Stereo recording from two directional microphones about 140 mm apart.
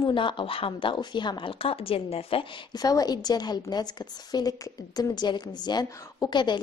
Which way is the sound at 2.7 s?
25° left (ahead or behind).